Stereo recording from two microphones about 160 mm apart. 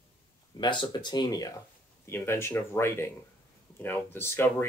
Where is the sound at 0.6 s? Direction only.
30° left (ahead or behind).